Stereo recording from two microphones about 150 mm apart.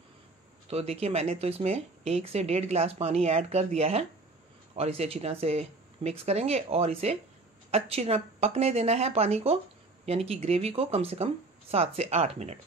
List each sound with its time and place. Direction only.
0.7 s speech: 45° right (ahead or behind)